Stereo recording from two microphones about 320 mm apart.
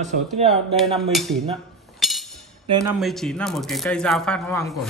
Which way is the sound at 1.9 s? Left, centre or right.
Centre.